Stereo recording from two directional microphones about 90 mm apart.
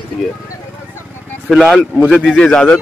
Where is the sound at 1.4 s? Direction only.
Centre (ahead or behind).